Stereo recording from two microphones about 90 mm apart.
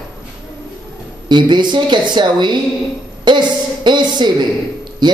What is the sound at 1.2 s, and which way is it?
A man's voice, 55° right (ahead or behind).